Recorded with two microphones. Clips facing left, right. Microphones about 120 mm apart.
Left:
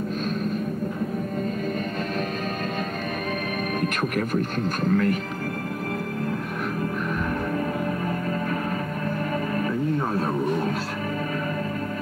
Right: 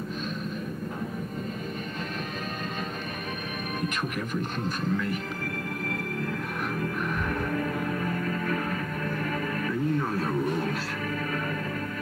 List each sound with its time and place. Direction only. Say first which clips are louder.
4.3 s speech: left 5 dB; 60° left (ahead or behind)